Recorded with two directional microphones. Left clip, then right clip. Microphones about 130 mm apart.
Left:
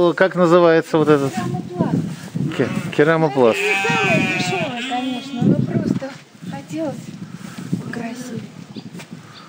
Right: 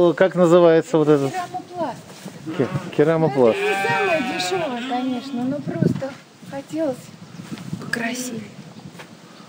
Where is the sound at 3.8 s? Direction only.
10° left (ahead or behind).